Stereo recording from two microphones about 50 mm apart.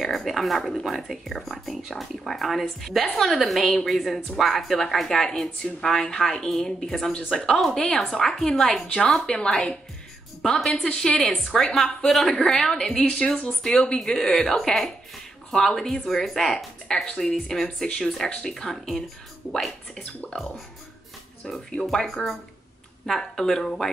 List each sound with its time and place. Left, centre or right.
0.0 s a woman's voice: centre
21.5 s a woman's voice: centre